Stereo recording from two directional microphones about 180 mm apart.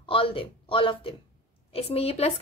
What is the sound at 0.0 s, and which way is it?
Speech, 30° left (ahead or behind).